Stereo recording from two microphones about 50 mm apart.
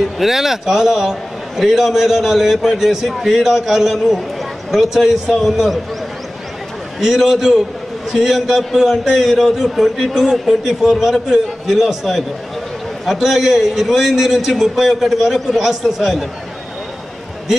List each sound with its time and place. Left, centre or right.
0.0 s a man's voice: centre
7.0 s a man's voice: centre